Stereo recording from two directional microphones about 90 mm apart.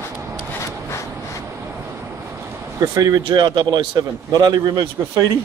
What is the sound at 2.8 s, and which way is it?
Speech, 45° right (ahead or behind).